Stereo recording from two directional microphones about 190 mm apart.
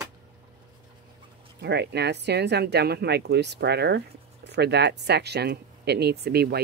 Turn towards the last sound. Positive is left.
turn(degrees=-55)  # may be behind; listen again after turning